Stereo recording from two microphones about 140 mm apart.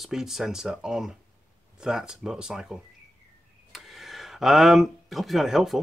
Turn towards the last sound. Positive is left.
turn(degrees=0)  # may be behind; listen again after turning